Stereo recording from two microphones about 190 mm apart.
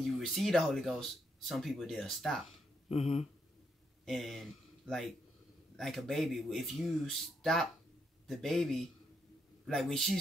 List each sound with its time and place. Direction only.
0.0 s speech: centre (ahead or behind)
2.9 s a sound: 30° left (ahead or behind)
4.0 s speech: centre (ahead or behind)